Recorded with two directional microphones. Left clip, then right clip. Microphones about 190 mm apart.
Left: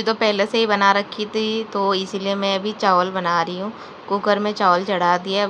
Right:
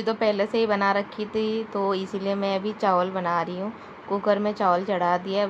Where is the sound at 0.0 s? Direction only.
15° left (ahead or behind).